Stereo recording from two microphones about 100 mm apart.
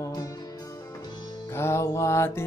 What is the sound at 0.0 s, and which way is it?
Music, 35° left (ahead or behind).